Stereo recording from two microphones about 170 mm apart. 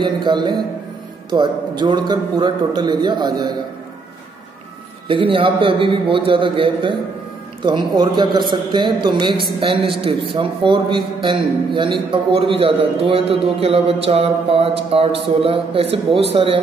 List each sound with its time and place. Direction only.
0.0 s a man's voice: 25° right (ahead or behind)
5.0 s a man's voice: 30° right (ahead or behind)